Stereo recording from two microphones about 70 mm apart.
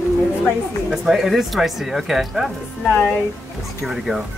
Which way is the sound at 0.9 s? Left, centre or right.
Centre.